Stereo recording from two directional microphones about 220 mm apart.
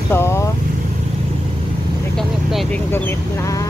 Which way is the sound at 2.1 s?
Centre (ahead or behind).